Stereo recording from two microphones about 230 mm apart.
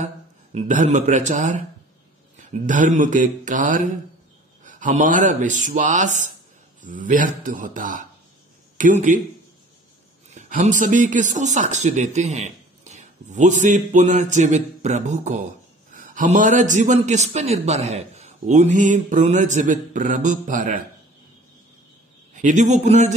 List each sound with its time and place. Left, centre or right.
0.6 s speech: right
10.3 s speech: right
22.3 s speech: right